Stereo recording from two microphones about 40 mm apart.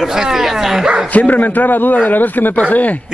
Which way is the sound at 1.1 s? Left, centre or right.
Left.